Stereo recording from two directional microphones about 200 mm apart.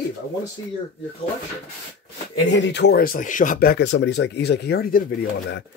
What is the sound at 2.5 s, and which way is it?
Speech, 60° left (ahead or behind).